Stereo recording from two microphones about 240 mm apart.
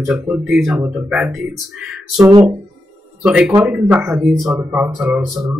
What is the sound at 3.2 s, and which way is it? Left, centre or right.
Speech, centre.